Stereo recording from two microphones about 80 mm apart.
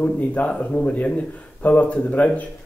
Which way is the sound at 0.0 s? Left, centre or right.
Centre.